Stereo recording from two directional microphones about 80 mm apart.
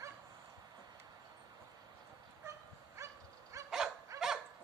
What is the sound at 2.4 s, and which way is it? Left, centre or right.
Dog, right.